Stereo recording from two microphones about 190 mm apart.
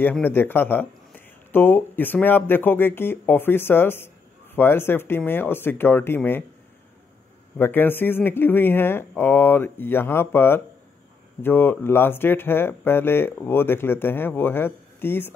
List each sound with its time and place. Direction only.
0.0 s speech: 10° left (ahead or behind)
7.5 s speech: 10° left (ahead or behind)